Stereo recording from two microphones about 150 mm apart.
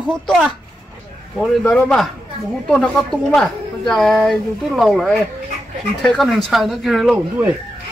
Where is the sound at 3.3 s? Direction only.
5° left (ahead or behind).